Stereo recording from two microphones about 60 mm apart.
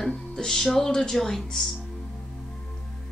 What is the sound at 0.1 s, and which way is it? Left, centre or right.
Speech, centre.